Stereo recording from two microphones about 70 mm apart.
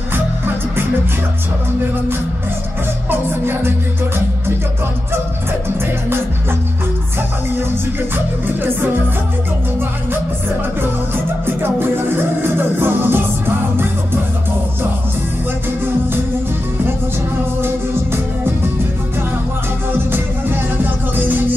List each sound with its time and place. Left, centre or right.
3.1 s music: right
12.5 s music: right